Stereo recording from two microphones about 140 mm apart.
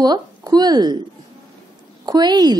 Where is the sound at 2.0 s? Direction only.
30° right (ahead or behind).